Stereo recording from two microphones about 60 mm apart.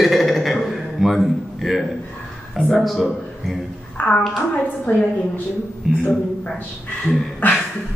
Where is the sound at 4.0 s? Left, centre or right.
Left.